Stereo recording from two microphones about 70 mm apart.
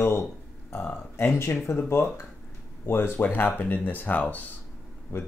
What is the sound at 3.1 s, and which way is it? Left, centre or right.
Speech, left.